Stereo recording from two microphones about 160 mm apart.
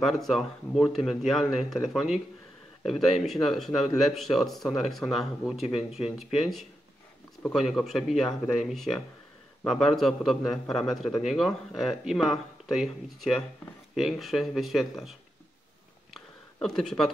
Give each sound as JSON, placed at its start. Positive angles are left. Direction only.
{"t": 0.0, "sound": "a man's voice", "side_deg": 0}
{"t": 16.5, "sound": "a man's voice", "side_deg": 0}